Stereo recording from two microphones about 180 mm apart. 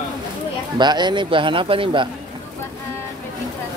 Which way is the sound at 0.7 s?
25° right (ahead or behind).